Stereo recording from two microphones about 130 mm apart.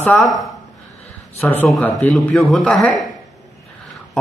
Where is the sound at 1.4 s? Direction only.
15° left (ahead or behind).